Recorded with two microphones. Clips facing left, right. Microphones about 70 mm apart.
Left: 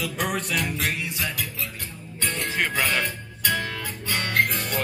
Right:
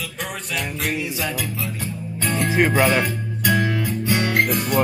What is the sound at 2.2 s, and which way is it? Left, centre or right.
Music, centre.